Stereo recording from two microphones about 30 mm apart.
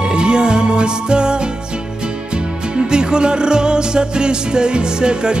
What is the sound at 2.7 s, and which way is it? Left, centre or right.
Music, right.